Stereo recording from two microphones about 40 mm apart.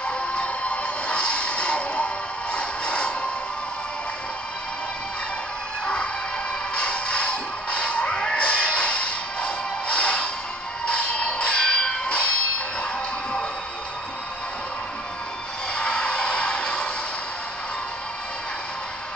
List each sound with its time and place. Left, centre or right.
0.0 s music: left
2.5 s a sound: left
6.7 s music: left
10.9 s bell: left
15.7 s music: left